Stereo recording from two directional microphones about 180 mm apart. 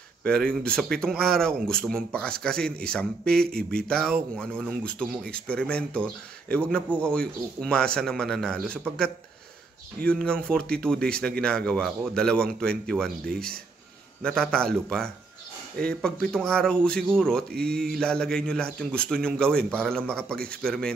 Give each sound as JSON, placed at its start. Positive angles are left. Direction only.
{"t": 0.2, "sound": "speech", "side_deg": 5}
{"t": 13.2, "sound": "speech", "side_deg": -55}
{"t": 14.2, "sound": "speech", "side_deg": 5}